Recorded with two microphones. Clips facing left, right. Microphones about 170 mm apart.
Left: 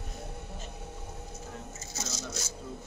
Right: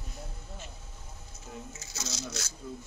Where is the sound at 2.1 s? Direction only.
75° right (ahead or behind).